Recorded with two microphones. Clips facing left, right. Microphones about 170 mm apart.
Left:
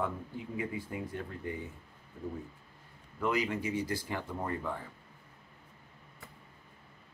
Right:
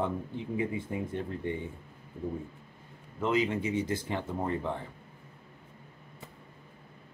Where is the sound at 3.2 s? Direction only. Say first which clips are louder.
Right 3 dB; 25° right (ahead or behind).